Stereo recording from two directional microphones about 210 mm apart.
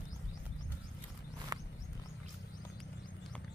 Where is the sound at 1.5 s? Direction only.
15° right (ahead or behind).